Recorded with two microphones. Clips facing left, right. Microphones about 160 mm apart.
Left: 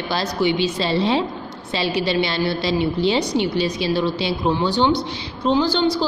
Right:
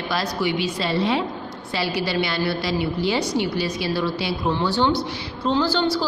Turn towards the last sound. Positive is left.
turn(degrees=20)  # may be behind; listen again after turning